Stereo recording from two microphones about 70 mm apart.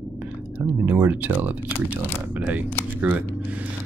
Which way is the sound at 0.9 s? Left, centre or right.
Right.